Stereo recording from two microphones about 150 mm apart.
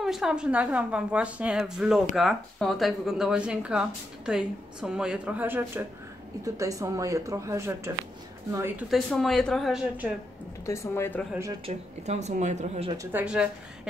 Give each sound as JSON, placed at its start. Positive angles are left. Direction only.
{"t": 0.0, "sound": "a woman's voice", "side_deg": -5}
{"t": 8.9, "sound": "speech", "side_deg": 0}
{"t": 10.6, "sound": "a woman's voice", "side_deg": 20}
{"t": 11.6, "sound": "speech", "side_deg": -45}
{"t": 12.9, "sound": "speech", "side_deg": -20}
{"t": 13.2, "sound": "a woman's voice", "side_deg": -5}